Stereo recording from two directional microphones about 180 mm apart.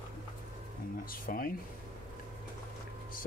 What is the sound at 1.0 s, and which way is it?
Speech, 50° left (ahead or behind).